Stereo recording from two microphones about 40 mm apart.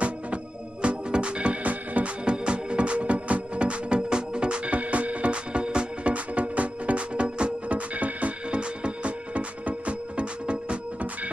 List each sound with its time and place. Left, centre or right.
0.8 s music: right
2.2 s music: right
6.1 s music: right